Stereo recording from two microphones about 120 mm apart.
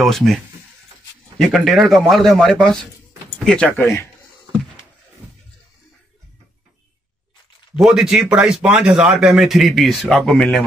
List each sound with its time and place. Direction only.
0.0 s speech: centre (ahead or behind)
1.5 s speech: centre (ahead or behind)
3.8 s a man's voice: 25° left (ahead or behind)
7.7 s speech: 5° right (ahead or behind)